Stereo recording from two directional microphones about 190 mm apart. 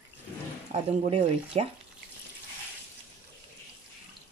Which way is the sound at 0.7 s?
35° right (ahead or behind).